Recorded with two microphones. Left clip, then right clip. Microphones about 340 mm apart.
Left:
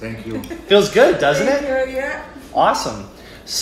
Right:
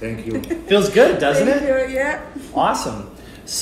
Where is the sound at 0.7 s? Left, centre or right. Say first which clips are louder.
Left 1 dB; centre.